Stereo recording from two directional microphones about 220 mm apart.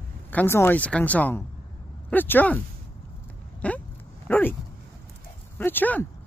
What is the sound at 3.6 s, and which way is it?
Speech, 5° left (ahead or behind).